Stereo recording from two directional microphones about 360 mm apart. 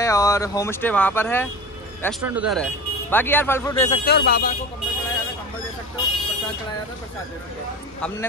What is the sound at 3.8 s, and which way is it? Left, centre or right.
Speech, left.